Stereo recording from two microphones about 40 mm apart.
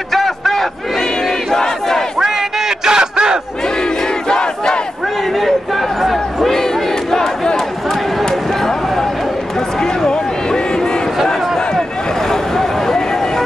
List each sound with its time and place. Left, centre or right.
0.1 s crowd: centre
1.5 s battle cry: centre
2.8 s a sound: centre
4.3 s battle cry: centre
12.3 s vehicle: centre